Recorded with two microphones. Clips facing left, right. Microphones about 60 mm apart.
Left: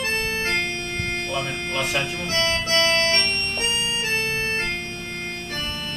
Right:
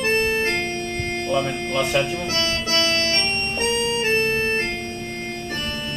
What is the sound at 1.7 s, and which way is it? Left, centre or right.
Music, left.